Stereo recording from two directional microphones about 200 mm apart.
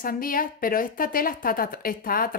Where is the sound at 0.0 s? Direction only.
45° left (ahead or behind).